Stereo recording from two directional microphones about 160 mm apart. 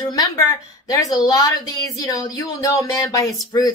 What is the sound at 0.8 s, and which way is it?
Speech, 25° left (ahead or behind).